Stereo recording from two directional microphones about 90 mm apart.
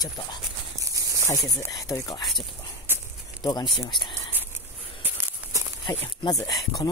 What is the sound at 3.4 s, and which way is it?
Speech, 50° left (ahead or behind).